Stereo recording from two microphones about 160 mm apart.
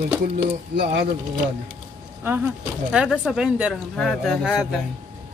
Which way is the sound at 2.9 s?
5° right (ahead or behind).